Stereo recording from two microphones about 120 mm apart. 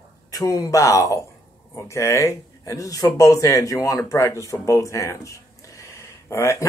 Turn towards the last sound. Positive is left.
turn(degrees=25)  # may be behind; listen again after turning